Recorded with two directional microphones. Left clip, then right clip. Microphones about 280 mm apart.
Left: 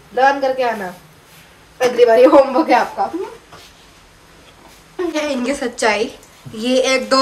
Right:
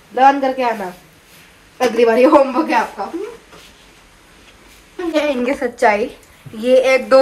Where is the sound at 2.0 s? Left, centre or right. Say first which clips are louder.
Left 2 dB; centre.